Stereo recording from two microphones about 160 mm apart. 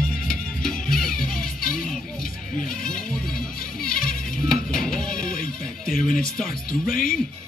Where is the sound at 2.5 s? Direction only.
60° left (ahead or behind).